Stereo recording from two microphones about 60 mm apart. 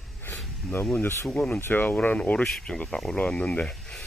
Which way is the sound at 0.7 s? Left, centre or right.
Left.